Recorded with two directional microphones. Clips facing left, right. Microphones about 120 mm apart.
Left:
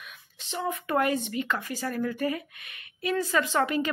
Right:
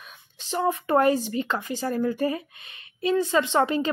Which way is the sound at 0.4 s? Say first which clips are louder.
Right 6 dB; 35° right (ahead or behind).